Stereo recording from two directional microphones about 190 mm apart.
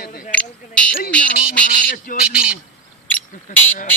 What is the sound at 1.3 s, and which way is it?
Speech, 50° left (ahead or behind).